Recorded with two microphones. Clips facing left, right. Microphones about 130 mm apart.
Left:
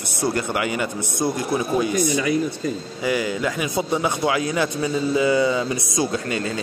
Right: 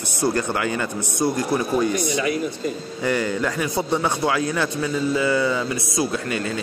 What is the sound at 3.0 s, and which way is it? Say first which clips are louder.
Speech: right 1 dB; 10° left (ahead or behind).